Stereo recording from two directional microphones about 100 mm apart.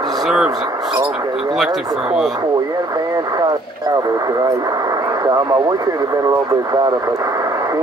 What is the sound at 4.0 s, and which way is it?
Speech, 40° right (ahead or behind).